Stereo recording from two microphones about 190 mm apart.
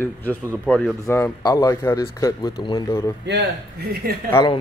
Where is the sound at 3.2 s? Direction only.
60° right (ahead or behind).